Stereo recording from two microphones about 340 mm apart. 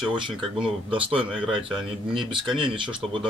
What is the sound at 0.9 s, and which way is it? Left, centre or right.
Speech, centre.